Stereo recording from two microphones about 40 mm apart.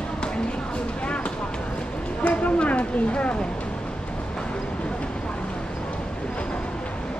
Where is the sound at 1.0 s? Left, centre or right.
Left.